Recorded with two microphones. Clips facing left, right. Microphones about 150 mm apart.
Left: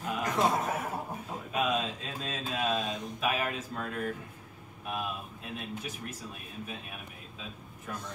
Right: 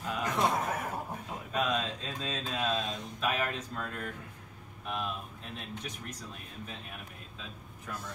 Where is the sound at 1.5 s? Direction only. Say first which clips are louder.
Left 1 dB; 10° left (ahead or behind).